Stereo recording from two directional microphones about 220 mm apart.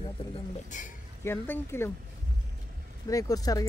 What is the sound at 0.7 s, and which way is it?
Speech, 35° left (ahead or behind).